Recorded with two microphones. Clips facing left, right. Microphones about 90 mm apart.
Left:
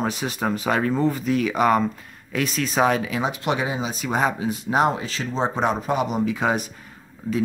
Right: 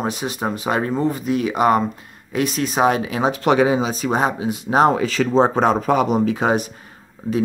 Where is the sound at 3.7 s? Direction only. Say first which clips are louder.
Right 8 dB; 40° right (ahead or behind).